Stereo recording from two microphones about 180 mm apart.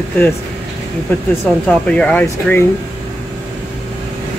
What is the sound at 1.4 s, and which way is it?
Speech, 5° left (ahead or behind).